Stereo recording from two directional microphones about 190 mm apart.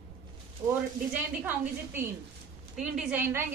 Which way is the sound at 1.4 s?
10° right (ahead or behind).